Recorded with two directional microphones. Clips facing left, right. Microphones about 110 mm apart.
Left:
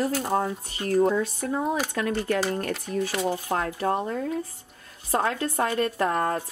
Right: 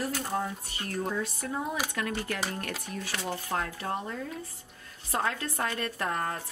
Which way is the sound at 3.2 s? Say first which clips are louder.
Left 6 dB; 45° left (ahead or behind).